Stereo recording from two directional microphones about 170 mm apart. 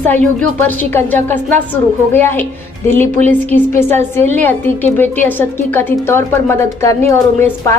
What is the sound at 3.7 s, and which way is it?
A woman's voice, 15° left (ahead or behind).